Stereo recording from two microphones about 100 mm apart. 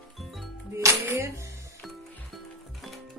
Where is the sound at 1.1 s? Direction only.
25° right (ahead or behind).